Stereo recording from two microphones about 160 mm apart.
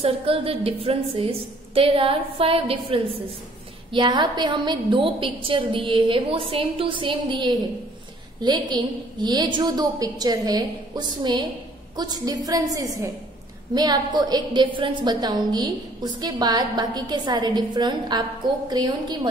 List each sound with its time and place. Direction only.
0.0 s a woman's voice: 35° right (ahead or behind)